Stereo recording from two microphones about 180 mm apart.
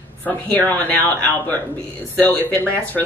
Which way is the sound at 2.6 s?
10° left (ahead or behind).